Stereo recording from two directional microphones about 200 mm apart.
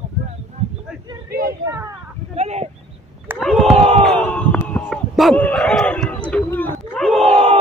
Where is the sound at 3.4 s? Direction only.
Centre (ahead or behind).